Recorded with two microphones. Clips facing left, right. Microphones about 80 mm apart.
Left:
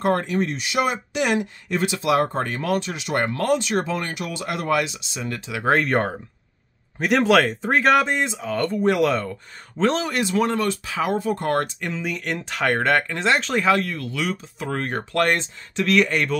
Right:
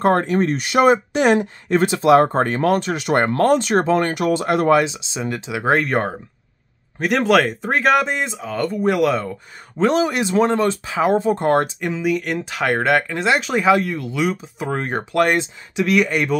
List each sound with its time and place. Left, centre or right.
0.0 s speech: right; by 5.7 s centre
5.7 s speech: centre; by 11.7 s right
11.8 s speech: centre